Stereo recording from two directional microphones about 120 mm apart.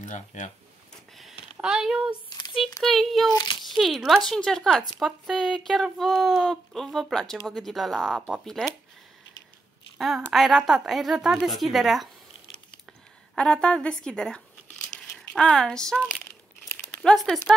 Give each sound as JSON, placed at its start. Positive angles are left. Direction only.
{"t": 0.0, "sound": "speech", "side_deg": 90}
{"t": 1.6, "sound": "speech", "side_deg": -5}
{"t": 9.9, "sound": "speech", "side_deg": 0}
{"t": 13.4, "sound": "a woman's voice", "side_deg": 5}